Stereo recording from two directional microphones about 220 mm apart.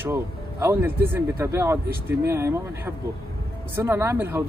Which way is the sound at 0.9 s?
45° right (ahead or behind).